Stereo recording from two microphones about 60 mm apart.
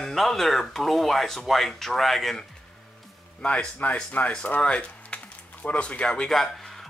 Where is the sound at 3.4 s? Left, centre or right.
Centre.